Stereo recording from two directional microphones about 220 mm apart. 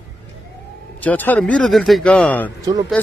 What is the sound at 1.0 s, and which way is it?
Speech, 5° left (ahead or behind).